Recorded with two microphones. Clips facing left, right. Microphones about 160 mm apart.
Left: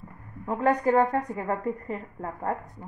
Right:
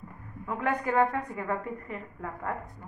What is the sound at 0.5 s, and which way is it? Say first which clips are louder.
A woman's voice: left 6 dB; 35° left (ahead or behind).